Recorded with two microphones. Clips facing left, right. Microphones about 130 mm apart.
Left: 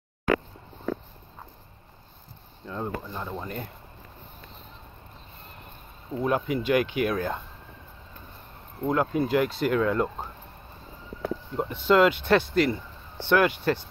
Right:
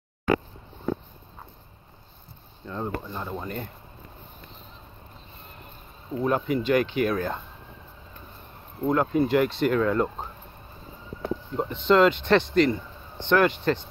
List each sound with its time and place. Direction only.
2.6 s speech: centre (ahead or behind)
6.2 s speech: 5° left (ahead or behind)
8.8 s speech: centre (ahead or behind)
11.5 s speech: 5° left (ahead or behind)